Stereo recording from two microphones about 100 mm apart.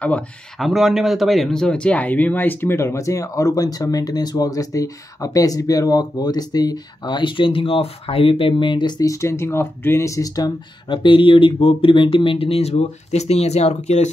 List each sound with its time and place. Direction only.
0.6 s speech: 5° right (ahead or behind); by 9.1 s 45° left (ahead or behind)
9.1 s speech: 30° left (ahead or behind)
10.9 s speech: 55° left (ahead or behind); by 13.7 s 90° left